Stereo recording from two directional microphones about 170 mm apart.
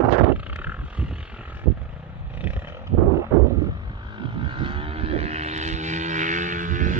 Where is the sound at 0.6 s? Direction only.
10° right (ahead or behind).